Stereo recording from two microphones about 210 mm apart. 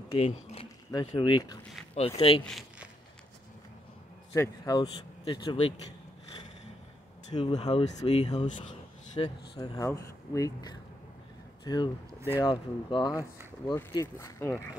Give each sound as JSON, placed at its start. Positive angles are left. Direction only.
{"t": 0.1, "sound": "a sound", "side_deg": 30}
{"t": 0.9, "sound": "speech", "side_deg": 20}
{"t": 2.4, "sound": "a sound", "side_deg": 0}
{"t": 4.3, "sound": "speech", "side_deg": 15}
{"t": 7.3, "sound": "speech", "side_deg": 25}
{"t": 9.2, "sound": "speech", "side_deg": 15}